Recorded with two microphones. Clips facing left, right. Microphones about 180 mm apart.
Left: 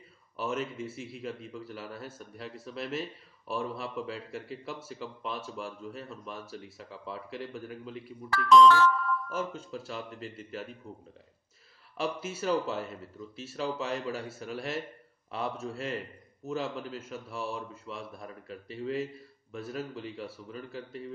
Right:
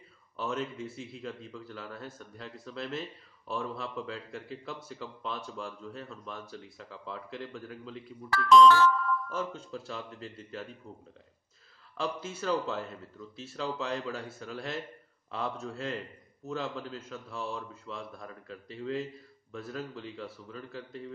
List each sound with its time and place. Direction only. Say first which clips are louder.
0.4 s a man's voice: left 1 dB; 5° left (ahead or behind)
9.3 s a man's voice: left 1 dB; 5° left (ahead or behind)
12.0 s a man's voice: left 2 dB; 5° left (ahead or behind)